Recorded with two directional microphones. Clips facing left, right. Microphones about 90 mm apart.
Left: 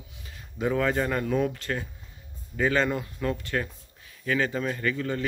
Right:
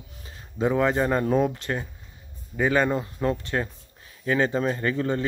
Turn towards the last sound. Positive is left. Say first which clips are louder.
# right 3 dB
turn(degrees=-30)  # may be behind; listen again after turning